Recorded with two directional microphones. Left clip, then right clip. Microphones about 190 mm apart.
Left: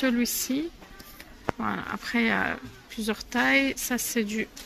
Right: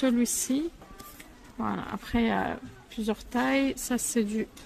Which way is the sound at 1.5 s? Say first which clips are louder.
Right 2 dB; 5° right (ahead or behind).